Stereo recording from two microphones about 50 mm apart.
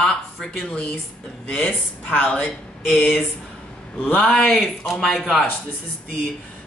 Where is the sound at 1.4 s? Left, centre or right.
Left.